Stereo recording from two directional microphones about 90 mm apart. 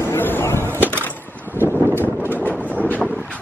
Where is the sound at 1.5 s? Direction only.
25° left (ahead or behind).